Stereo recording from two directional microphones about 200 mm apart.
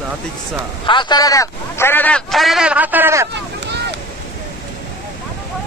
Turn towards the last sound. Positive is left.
turn(degrees=-55)  # may be behind; listen again after turning